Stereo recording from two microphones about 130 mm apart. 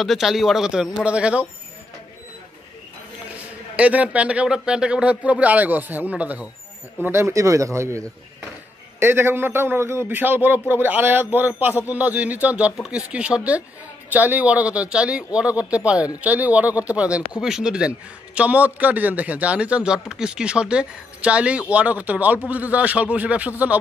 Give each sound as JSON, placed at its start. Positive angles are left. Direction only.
{"t": 0.0, "sound": "a man's voice", "side_deg": 0}
{"t": 3.7, "sound": "a man's voice", "side_deg": -10}
{"t": 9.0, "sound": "a man's voice", "side_deg": -15}